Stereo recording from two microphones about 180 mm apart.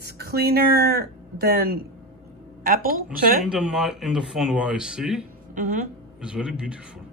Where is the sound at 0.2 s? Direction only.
60° right (ahead or behind).